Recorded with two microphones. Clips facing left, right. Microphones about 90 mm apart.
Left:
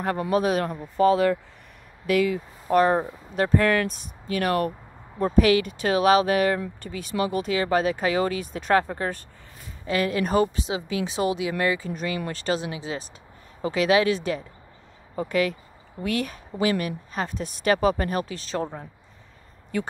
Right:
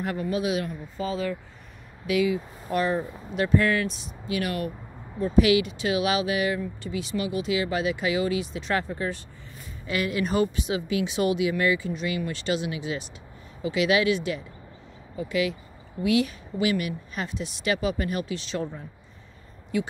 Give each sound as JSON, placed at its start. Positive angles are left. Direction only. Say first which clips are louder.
{"t": 0.3, "sound": "speech", "louder": "left 5 dB", "side_deg": 45}
{"t": 0.9, "sound": "speech", "louder": "left 10 dB", "side_deg": 65}
{"t": 2.0, "sound": "speech", "louder": "left 2 dB", "side_deg": 55}
{"t": 9.8, "sound": "speech", "louder": "left 3 dB", "side_deg": 35}